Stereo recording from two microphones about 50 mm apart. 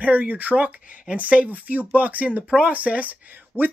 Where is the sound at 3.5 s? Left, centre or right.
Left.